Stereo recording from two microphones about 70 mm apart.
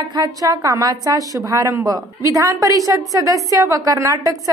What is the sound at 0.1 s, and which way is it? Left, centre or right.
A woman's voice, right.